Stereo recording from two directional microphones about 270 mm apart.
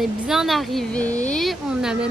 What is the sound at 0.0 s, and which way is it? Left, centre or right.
Speech, centre.